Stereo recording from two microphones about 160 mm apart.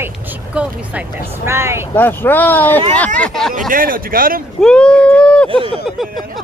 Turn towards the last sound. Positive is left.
turn(degrees=0)  # may be behind; listen again after turning